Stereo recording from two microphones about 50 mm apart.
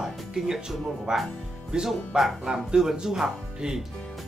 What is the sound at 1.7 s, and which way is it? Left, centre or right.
Speech, centre.